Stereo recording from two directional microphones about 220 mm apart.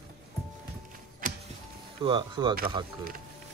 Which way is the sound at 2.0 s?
20° right (ahead or behind).